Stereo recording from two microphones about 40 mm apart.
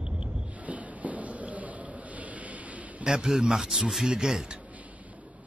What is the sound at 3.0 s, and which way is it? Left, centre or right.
A woman's voice, centre.